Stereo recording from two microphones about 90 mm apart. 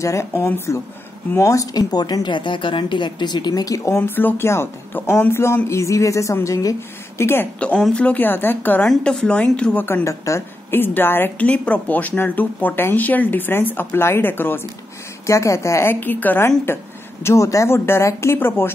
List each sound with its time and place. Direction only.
0.0 s a woman's voice: 35° left (ahead or behind)
7.5 s a woman's voice: 15° left (ahead or behind)
8.8 s a woman's voice: 5° left (ahead or behind)
10.0 s a woman's voice: 35° left (ahead or behind)